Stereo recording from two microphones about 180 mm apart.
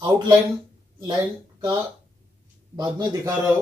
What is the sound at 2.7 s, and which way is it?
Speech, 20° right (ahead or behind).